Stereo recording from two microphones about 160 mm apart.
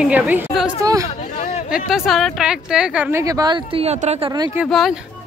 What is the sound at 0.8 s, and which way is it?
Speech, 20° right (ahead or behind).